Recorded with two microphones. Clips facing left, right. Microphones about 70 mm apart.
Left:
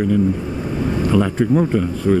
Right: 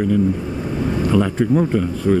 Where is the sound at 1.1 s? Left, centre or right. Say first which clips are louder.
Left 1 dB; left.